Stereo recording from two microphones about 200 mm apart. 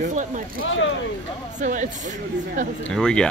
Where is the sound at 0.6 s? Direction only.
75° left (ahead or behind).